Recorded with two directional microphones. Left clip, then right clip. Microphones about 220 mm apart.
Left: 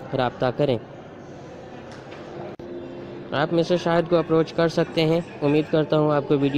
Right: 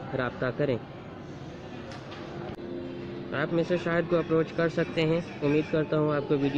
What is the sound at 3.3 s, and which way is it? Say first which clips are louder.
Speech: left 6 dB; 30° left (ahead or behind).